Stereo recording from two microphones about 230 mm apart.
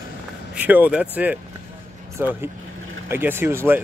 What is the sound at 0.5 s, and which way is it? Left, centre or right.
Speech, centre.